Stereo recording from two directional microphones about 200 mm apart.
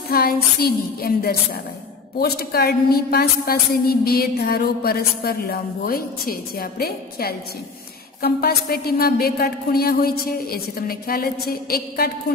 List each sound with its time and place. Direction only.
0.1 s a woman's voice: 50° left (ahead or behind)